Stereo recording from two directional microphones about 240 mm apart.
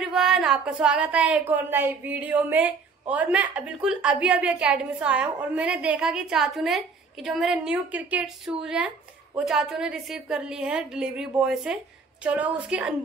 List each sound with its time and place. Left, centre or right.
0.0 s speech: centre